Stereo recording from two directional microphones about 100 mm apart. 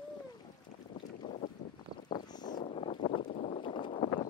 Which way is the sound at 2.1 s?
45° left (ahead or behind).